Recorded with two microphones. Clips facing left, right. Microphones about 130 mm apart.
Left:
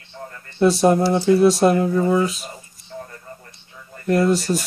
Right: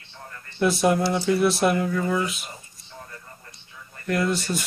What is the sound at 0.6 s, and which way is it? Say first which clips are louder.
Speech: left 5 dB; 35° left (ahead or behind).